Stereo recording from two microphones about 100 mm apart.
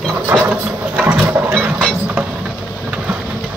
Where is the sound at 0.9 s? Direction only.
20° right (ahead or behind).